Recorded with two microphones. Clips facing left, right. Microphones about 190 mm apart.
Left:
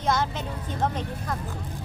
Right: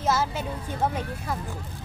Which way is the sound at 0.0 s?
5° right (ahead or behind).